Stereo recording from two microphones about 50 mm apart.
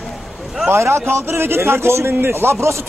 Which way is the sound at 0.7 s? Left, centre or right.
Right.